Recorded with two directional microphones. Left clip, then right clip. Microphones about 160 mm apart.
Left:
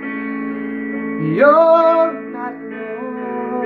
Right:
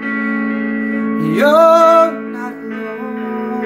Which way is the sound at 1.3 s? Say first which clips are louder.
Right 1 dB; 10° right (ahead or behind).